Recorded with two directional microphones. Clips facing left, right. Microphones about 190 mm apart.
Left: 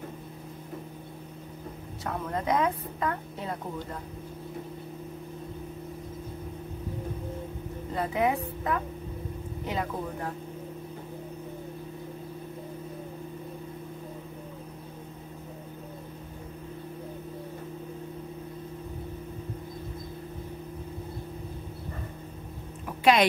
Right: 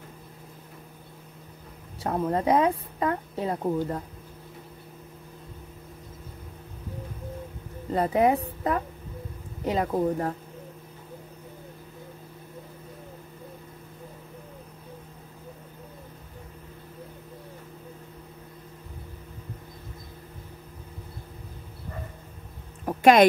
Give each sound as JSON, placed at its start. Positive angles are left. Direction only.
{"t": 2.0, "sound": "a woman's voice", "side_deg": -30}
{"t": 7.9, "sound": "a woman's voice", "side_deg": -35}
{"t": 22.8, "sound": "a sound", "side_deg": -45}